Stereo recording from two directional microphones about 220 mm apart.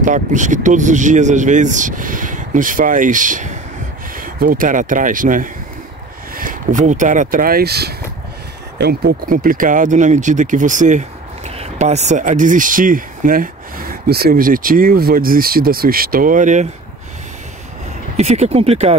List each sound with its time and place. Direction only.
0.0 s speech: 35° right (ahead or behind)
18.1 s speech: 30° right (ahead or behind)